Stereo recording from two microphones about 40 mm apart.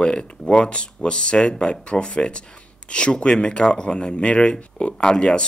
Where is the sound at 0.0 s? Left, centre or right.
Left.